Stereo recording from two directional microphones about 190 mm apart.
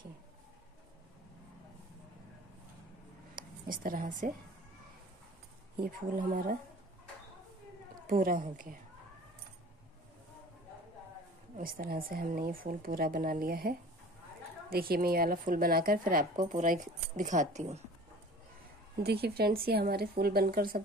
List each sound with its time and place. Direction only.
3.4 s a sound: 50° right (ahead or behind)
3.7 s speech: 45° right (ahead or behind)
5.8 s speech: 45° right (ahead or behind)
8.1 s speech: 50° right (ahead or behind)
11.5 s speech: 50° right (ahead or behind)
18.9 s speech: 55° right (ahead or behind)